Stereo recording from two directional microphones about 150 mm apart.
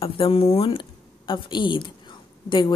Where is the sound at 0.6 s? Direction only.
35° left (ahead or behind).